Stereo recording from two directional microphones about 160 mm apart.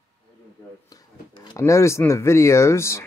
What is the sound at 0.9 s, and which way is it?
Speech, 25° left (ahead or behind).